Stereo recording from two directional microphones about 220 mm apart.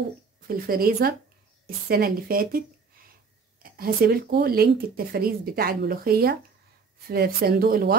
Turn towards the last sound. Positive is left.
turn(degrees=-40)  # may be behind; listen again after turning